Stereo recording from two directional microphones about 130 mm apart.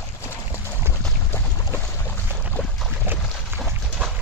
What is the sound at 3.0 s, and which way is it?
Boat, 15° right (ahead or behind).